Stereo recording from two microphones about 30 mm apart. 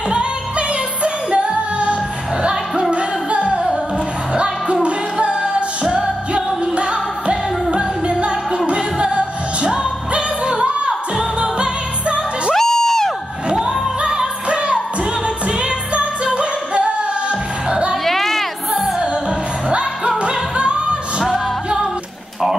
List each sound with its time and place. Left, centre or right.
0.1 s music: right
5.1 s music: right
11.3 s music: right
12.5 s crowd: centre
13.7 s music: right
18.0 s a sound: centre
19.7 s music: right